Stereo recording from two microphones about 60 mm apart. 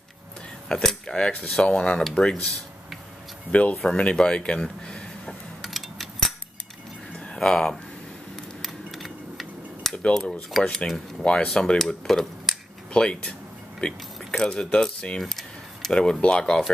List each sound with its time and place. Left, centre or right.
0.7 s cutlery: centre
3.5 s speech: left
5.6 s a sound: centre
7.2 s a sound: centre
8.6 s a sound: centre
9.9 s cutlery: centre
11.4 s speech: centre
12.9 s cutlery: centre
13.7 s speech: centre
15.1 s speech: centre